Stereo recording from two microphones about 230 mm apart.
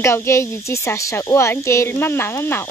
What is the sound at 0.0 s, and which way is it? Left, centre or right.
Speech, centre.